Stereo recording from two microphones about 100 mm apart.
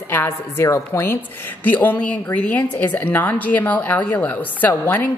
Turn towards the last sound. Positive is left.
turn(degrees=20)  # may be behind; listen again after turning